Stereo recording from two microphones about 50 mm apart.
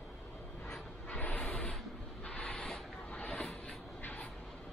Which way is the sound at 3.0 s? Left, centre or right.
Left.